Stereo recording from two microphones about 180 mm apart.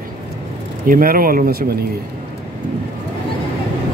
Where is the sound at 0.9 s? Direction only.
50° right (ahead or behind).